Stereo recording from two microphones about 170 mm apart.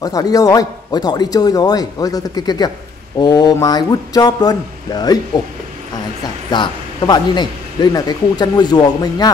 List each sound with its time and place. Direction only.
0.0 s a man's voice: 20° left (ahead or behind)
6.5 s a man's voice: 25° left (ahead or behind)